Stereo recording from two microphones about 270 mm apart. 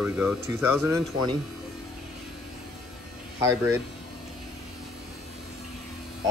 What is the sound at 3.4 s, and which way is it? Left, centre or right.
Speech, centre.